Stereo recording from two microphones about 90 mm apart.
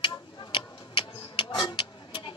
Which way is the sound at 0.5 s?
65° left (ahead or behind).